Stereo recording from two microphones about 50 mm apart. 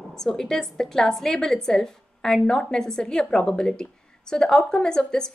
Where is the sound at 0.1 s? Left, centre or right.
Centre.